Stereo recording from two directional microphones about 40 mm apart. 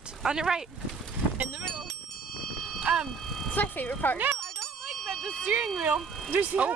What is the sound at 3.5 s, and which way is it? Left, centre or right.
Speech, left.